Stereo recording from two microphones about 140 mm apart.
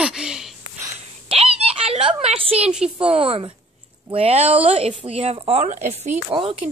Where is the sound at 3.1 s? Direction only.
40° right (ahead or behind).